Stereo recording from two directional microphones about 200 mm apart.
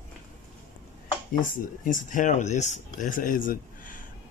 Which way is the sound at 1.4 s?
40° left (ahead or behind).